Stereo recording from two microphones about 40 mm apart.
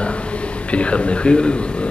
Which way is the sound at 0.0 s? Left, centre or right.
Left.